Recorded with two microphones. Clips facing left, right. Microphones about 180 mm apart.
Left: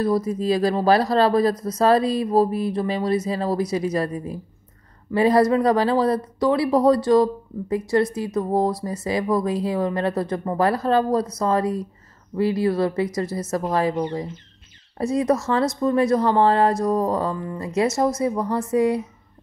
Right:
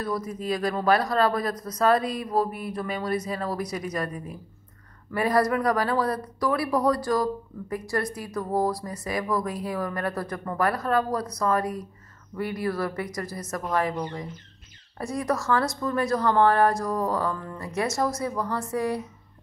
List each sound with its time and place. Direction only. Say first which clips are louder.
0.0 s speech: left 8 dB; 30° left (ahead or behind)